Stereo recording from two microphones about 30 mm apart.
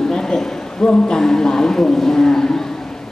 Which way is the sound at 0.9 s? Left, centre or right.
Left.